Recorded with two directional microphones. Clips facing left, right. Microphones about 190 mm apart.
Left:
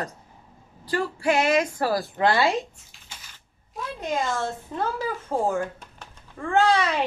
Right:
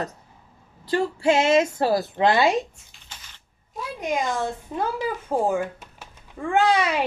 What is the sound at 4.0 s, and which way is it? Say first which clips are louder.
Speech: right 2 dB; 15° right (ahead or behind).